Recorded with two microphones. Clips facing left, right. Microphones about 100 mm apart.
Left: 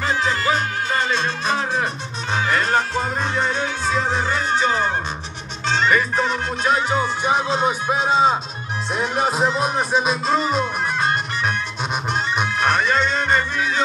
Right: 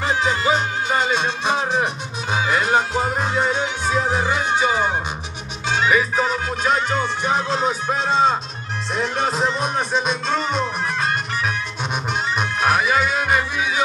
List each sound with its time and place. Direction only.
0.0 s music: 15° right (ahead or behind)